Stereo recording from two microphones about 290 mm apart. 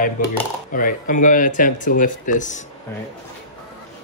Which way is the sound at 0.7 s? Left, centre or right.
Left.